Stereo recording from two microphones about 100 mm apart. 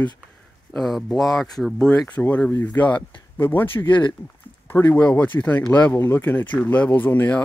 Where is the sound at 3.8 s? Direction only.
50° left (ahead or behind).